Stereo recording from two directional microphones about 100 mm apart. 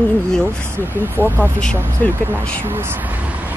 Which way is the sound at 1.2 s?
20° right (ahead or behind).